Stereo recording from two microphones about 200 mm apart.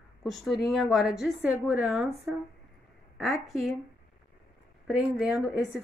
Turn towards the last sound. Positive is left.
turn(degrees=0)  # may be behind; listen again after turning